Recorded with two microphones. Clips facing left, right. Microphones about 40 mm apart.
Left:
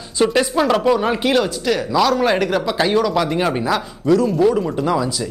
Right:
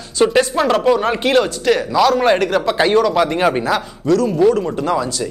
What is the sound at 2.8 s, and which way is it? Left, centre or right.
Speech, centre.